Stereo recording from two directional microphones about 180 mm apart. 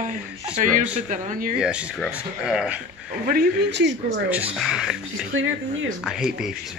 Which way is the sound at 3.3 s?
65° right (ahead or behind).